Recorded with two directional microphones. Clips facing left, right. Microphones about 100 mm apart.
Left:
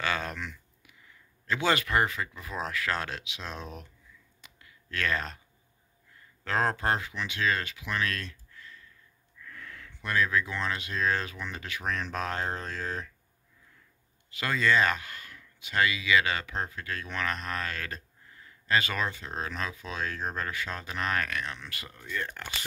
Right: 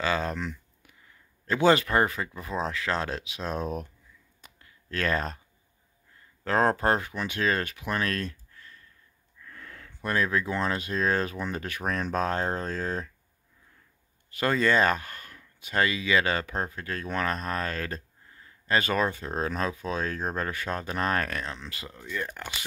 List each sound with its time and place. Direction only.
0.0 s a sound: 30° right (ahead or behind)
1.5 s speech: 35° right (ahead or behind)
4.4 s clicking: 35° right (ahead or behind)
6.4 s speech: 35° right (ahead or behind)
9.5 s speech: 35° right (ahead or behind)
14.4 s speech: 40° right (ahead or behind)
21.9 s speech: 10° right (ahead or behind)